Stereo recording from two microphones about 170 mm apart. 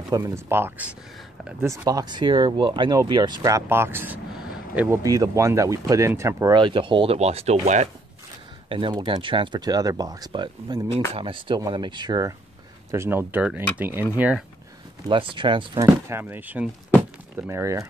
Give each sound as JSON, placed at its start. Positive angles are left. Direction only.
{"t": 0.1, "sound": "speech", "side_deg": -15}
{"t": 8.6, "sound": "speech", "side_deg": -30}
{"t": 15.0, "sound": "speech", "side_deg": -30}
{"t": 15.8, "sound": "speech", "side_deg": -15}